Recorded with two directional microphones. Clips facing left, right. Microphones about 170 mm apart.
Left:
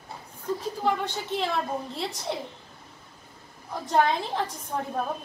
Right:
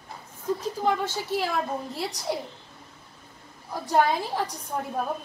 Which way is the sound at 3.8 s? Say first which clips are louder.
Right 1 dB; 5° right (ahead or behind).